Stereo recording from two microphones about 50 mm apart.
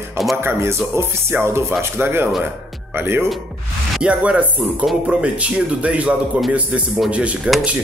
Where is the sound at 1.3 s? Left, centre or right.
Right.